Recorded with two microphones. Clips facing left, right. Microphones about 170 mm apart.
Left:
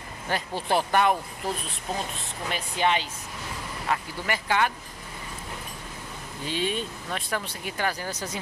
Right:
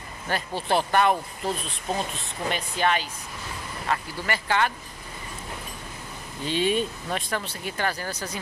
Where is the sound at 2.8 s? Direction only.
20° left (ahead or behind).